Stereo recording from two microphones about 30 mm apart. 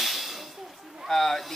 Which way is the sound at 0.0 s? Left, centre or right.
Centre.